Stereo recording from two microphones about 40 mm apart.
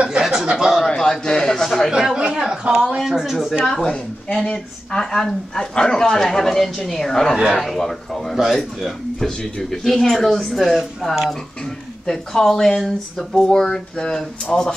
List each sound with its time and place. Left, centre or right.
0.2 s chuckle: centre
0.6 s speech: centre
0.8 s a man's voice: centre
1.6 s speech: centre
1.9 s a sound: centre
3.0 s speech: centre
3.6 s speech: centre
9.6 s speech: centre
12.1 s speech: centre